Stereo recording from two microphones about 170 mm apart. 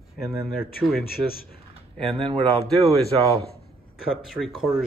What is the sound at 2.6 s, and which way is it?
Speech, centre (ahead or behind).